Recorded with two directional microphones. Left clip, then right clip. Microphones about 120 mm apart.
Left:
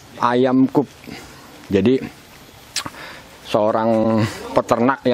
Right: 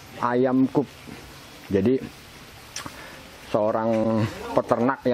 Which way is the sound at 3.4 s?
40° left (ahead or behind).